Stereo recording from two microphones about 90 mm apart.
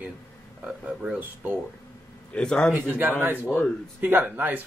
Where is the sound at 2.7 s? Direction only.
20° right (ahead or behind).